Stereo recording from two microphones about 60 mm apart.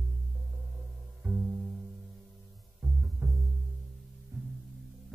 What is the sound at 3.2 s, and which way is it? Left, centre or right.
Music, right.